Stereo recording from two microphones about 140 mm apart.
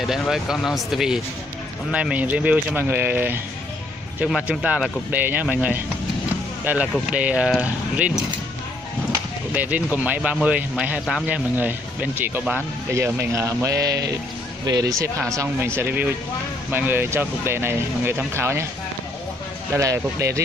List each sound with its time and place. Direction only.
0.0 s speech: centre (ahead or behind)
9.5 s speech: 10° right (ahead or behind)
19.7 s speech: 20° right (ahead or behind)